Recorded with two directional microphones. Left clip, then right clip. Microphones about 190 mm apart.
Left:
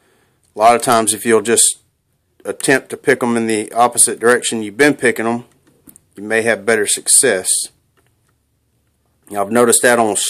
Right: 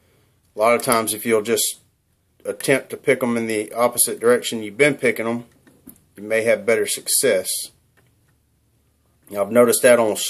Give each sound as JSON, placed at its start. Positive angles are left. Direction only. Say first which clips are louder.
{"t": 0.6, "sound": "speech", "louder": "left 6 dB", "side_deg": 40}
{"t": 9.2, "sound": "speech", "louder": "left 2 dB", "side_deg": 40}